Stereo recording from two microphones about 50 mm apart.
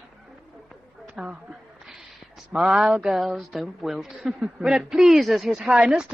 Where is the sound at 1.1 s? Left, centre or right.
Right.